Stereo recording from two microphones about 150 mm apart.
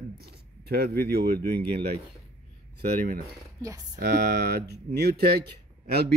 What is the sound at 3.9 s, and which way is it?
A man's voice, 90° right.